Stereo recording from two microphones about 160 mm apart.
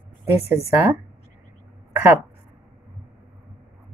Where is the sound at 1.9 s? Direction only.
15° right (ahead or behind).